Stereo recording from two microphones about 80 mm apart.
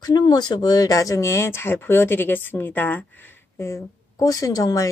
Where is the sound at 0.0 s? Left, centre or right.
Left.